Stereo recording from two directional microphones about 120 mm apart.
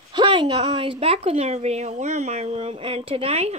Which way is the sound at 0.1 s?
45° right (ahead or behind).